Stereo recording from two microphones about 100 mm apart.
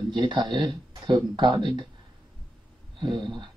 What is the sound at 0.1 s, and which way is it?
Speech, 50° right (ahead or behind).